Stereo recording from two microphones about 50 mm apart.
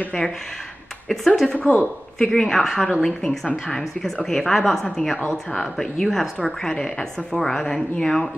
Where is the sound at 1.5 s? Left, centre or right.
Left.